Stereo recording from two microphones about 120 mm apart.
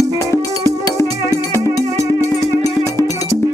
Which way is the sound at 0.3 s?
25° left (ahead or behind).